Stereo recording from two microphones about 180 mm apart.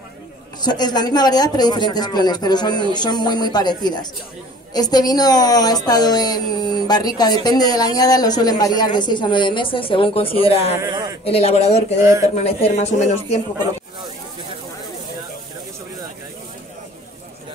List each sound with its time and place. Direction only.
0.6 s a woman's voice: 25° left (ahead or behind)
10.8 s speech: 20° right (ahead or behind)
11.2 s speech: 35° left (ahead or behind)
12.0 s speech: 15° right (ahead or behind)
12.4 s speech: 40° left (ahead or behind)